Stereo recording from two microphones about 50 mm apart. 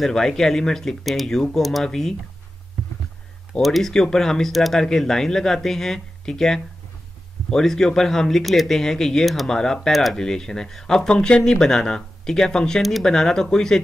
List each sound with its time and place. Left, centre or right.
0.0 s speech: centre
3.6 s speech: centre
3.9 s speech: centre
9.5 s speech: centre